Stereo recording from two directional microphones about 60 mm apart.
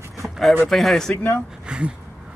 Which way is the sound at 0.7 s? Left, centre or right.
Centre.